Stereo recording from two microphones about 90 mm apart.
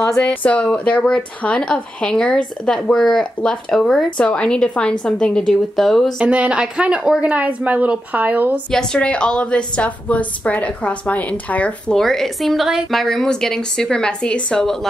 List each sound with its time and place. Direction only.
0.3 s a woman's voice: 15° left (ahead or behind)
6.1 s speech: 15° right (ahead or behind)
8.7 s a woman's voice: 10° left (ahead or behind)
12.0 s a woman's voice: 5° left (ahead or behind)